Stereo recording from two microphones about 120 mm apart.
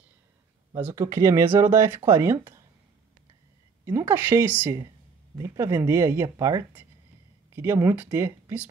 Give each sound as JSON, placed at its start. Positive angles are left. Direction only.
{"t": 0.9, "sound": "speech", "side_deg": -25}
{"t": 3.9, "sound": "speech", "side_deg": -20}